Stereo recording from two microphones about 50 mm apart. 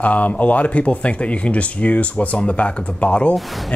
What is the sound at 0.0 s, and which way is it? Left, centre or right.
Speech, left.